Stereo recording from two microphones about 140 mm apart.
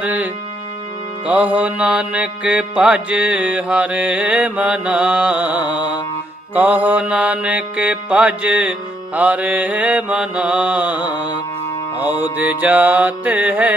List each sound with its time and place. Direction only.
0.0 s music: 10° right (ahead or behind)
1.2 s mantra: 10° right (ahead or behind)
5.7 s mantra: 30° left (ahead or behind)
6.5 s mantra: 10° right (ahead or behind)
12.0 s mantra: 15° right (ahead or behind)